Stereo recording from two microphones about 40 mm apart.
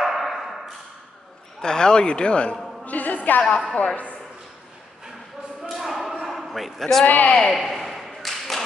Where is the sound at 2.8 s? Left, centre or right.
Left.